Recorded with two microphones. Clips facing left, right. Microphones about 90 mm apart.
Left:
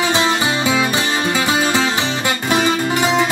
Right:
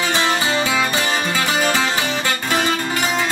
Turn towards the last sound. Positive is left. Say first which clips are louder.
# left 5 dB
turn(degrees=15)  # may be behind; listen again after turning